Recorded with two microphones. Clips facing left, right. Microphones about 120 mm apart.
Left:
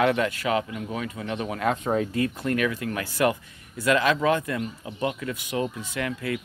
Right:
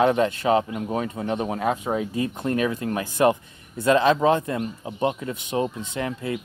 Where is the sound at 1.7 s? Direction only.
15° right (ahead or behind).